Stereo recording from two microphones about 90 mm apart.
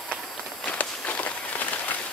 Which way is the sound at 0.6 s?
15° left (ahead or behind).